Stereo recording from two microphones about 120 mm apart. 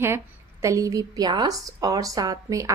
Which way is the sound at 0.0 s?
25° right (ahead or behind).